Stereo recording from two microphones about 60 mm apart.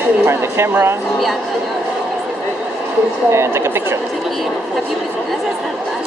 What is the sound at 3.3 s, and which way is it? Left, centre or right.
Speech, right.